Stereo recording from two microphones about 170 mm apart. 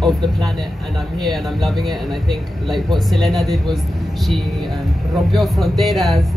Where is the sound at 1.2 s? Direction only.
Centre (ahead or behind).